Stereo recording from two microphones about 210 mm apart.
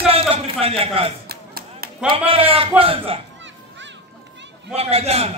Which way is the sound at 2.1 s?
25° right (ahead or behind).